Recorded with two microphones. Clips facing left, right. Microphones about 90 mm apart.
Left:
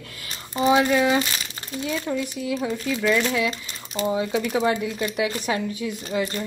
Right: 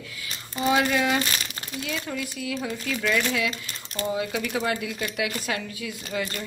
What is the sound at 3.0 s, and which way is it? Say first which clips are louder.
Speech: left 3 dB; 10° left (ahead or behind).